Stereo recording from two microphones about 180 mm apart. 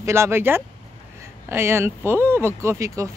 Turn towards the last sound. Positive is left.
turn(degrees=-15)  # may be behind; listen again after turning